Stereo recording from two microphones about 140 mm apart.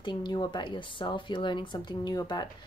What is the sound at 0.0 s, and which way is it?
Speech, 35° left (ahead or behind).